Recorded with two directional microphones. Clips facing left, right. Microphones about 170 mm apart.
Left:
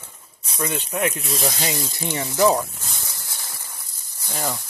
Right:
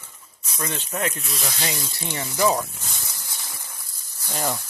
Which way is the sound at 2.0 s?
20° left (ahead or behind).